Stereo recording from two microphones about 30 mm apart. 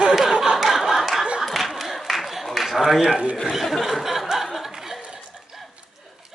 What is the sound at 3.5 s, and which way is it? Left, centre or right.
Speech, centre.